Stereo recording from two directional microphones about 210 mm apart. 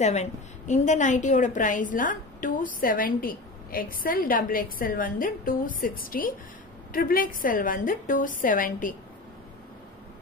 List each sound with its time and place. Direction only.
0.0 s a woman's voice: 35° left (ahead or behind)